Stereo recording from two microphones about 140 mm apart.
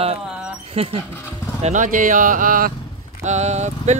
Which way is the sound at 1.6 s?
60° right (ahead or behind).